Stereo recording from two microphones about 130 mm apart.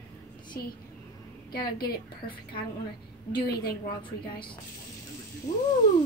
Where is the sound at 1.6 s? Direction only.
35° left (ahead or behind).